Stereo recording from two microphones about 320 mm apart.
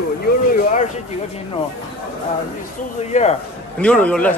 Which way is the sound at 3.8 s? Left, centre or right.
Centre.